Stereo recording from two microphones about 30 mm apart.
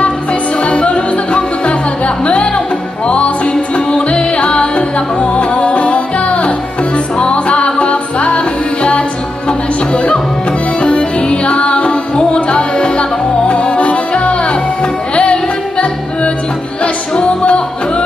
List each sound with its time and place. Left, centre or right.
0.0 s music: left
9.5 s music: left
16.8 s music: left